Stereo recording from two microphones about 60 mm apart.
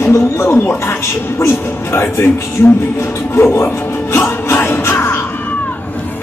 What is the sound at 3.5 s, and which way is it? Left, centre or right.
Music, left.